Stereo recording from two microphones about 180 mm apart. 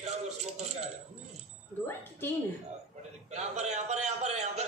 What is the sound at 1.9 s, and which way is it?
Speech, 10° left (ahead or behind).